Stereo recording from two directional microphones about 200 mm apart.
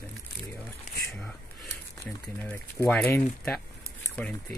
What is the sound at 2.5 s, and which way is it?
Speech, 5° left (ahead or behind).